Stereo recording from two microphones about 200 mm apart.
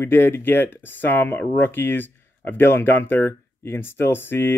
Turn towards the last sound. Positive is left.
turn(degrees=10)  # may be behind; listen again after turning